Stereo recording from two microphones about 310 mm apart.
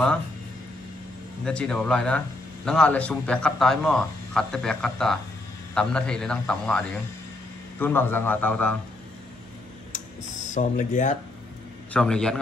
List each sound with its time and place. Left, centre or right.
1.4 s a man's voice: centre
7.8 s a man's voice: centre
10.4 s speech: left
11.9 s a man's voice: centre